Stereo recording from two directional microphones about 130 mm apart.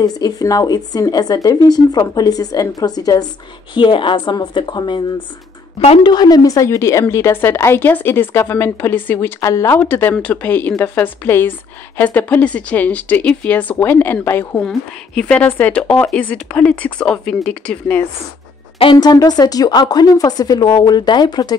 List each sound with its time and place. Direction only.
0.0 s a woman's voice: 30° left (ahead or behind)
6.0 s a woman's voice: 30° left (ahead or behind)
14.6 s speech: 5° left (ahead or behind)
18.9 s speech: 30° left (ahead or behind)